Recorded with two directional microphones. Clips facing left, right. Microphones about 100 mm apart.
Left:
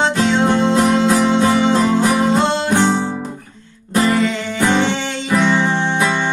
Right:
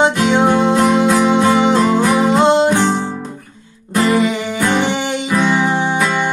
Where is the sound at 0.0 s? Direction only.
15° right (ahead or behind).